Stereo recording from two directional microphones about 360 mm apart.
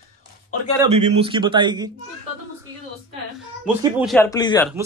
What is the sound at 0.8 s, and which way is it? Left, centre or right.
A man's voice, centre.